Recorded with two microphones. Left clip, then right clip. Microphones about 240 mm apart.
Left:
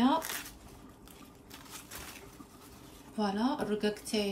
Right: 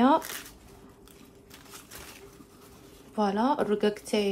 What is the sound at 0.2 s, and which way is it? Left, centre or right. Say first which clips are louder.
Shuffling cards: even; centre.